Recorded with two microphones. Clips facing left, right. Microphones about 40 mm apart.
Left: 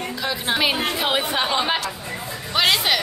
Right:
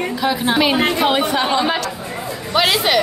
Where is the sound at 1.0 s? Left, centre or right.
Centre.